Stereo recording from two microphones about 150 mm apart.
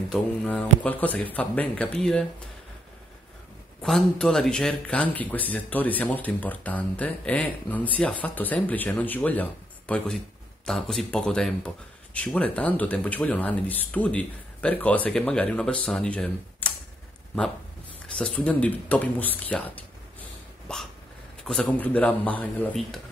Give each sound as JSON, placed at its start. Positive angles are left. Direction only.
{"t": 0.1, "sound": "speech", "side_deg": 5}
{"t": 3.8, "sound": "speech", "side_deg": 5}
{"t": 18.1, "sound": "speech", "side_deg": 5}
{"t": 19.5, "sound": "a sound", "side_deg": 10}
{"t": 21.5, "sound": "speech", "side_deg": 5}